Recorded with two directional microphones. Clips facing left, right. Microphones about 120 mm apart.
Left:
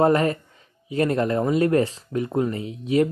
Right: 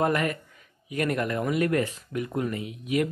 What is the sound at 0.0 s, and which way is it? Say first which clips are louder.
Speech: left 6 dB; 30° left (ahead or behind).